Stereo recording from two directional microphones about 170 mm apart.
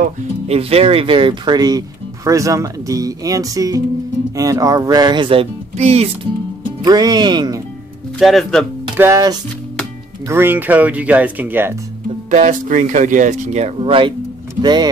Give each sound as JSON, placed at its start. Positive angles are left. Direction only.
{"t": 0.5, "sound": "speech", "side_deg": -35}
{"t": 6.8, "sound": "speech", "side_deg": -25}
{"t": 8.2, "sound": "speech", "side_deg": 0}
{"t": 8.9, "sound": "speech", "side_deg": -15}
{"t": 12.3, "sound": "speech", "side_deg": -45}